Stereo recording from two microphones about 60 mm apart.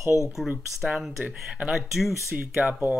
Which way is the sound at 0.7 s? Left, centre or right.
Centre.